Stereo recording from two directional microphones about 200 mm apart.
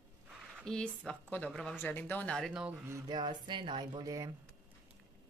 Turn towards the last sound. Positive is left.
turn(degrees=-15)  # may be behind; listen again after turning